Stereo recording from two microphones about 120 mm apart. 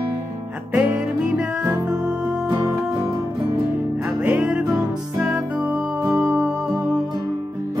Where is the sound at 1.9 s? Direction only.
10° right (ahead or behind).